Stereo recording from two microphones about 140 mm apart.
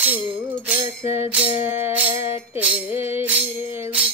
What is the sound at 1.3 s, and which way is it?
Music, 10° right (ahead or behind).